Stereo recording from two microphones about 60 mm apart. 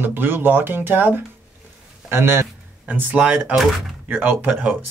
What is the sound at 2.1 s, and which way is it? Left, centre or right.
Speech, right.